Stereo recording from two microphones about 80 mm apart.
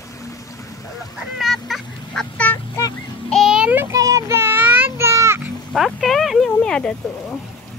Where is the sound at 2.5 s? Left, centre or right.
Left.